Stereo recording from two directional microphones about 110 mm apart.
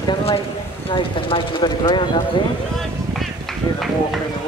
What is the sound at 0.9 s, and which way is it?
Vehicle, 50° left (ahead or behind).